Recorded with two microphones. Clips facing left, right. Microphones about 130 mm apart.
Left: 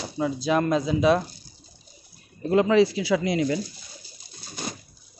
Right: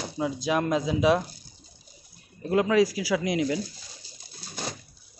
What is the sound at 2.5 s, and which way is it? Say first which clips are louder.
Speech: left 3 dB; 5° right (ahead or behind).